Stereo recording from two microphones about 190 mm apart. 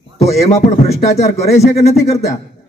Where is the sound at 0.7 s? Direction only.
35° left (ahead or behind).